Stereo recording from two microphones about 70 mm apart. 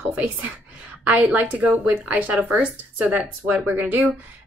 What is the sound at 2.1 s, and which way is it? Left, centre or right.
Speech, right.